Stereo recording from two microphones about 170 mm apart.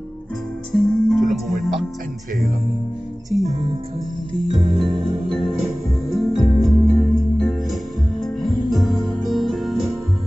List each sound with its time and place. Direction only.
0.7 s music: centre (ahead or behind)
3.3 s music: centre (ahead or behind)
4.7 s music: centre (ahead or behind)